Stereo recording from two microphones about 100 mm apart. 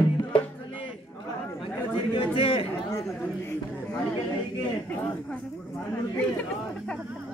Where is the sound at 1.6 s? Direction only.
60° left (ahead or behind).